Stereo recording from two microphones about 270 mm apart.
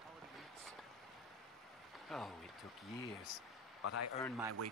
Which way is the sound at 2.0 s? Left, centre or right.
Centre.